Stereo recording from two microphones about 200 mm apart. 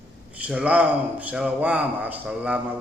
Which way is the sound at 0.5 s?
5° right (ahead or behind).